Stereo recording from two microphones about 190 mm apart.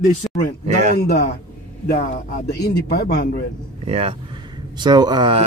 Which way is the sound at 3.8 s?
30° right (ahead or behind).